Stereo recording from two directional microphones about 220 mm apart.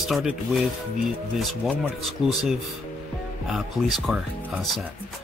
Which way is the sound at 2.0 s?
Centre (ahead or behind).